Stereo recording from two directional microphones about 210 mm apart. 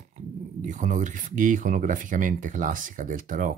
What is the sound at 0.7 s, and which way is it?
Speech, 35° right (ahead or behind).